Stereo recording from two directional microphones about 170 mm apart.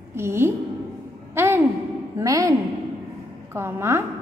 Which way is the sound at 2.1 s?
20° right (ahead or behind).